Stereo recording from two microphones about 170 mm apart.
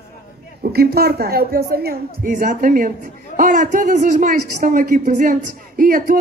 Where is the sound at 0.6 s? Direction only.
65° right (ahead or behind).